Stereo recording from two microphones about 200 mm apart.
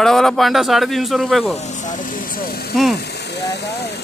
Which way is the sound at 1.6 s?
35° left (ahead or behind).